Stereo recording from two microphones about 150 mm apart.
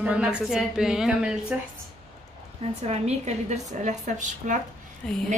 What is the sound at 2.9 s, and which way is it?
A woman's voice, 45° right (ahead or behind).